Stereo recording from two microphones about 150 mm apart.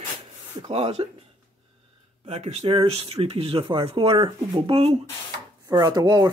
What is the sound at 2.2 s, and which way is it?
Speech, 45° right (ahead or behind).